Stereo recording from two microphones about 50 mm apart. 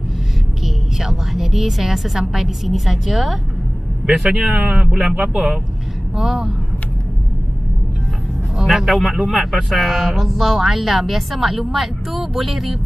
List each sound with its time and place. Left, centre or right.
0.9 s speech: centre
4.0 s speech: centre
6.1 s speech: centre
8.5 s speech: centre